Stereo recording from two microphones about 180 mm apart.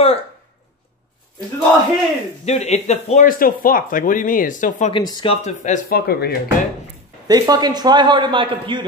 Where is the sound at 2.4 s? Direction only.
40° left (ahead or behind).